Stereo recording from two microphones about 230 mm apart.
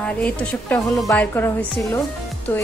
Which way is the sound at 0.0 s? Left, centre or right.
Centre.